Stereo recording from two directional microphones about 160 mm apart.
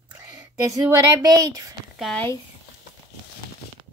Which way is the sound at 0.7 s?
20° right (ahead or behind).